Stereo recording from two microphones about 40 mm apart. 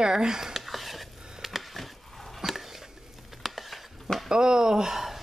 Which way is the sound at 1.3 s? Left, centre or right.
Centre.